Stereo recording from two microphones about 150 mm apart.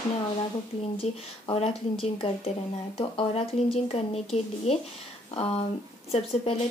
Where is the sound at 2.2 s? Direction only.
40° left (ahead or behind).